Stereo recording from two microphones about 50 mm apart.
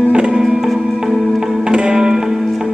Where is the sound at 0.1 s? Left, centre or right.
Centre.